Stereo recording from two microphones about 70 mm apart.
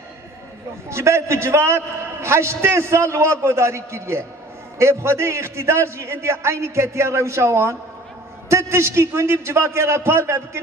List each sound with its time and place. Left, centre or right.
0.8 s a man's voice: right